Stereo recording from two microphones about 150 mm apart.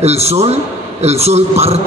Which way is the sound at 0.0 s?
45° right (ahead or behind).